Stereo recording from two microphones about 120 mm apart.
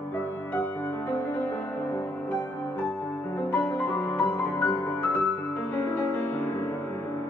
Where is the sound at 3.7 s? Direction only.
10° left (ahead or behind).